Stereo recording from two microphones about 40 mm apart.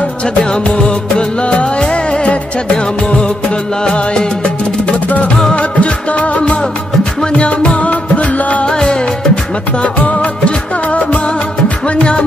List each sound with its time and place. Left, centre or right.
0.4 s music: centre
5.6 s music: left
8.6 s music: centre
10.0 s music of bollywood: left
11.9 s music: left